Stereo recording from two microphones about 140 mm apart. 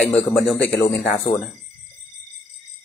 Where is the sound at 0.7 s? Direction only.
15° left (ahead or behind).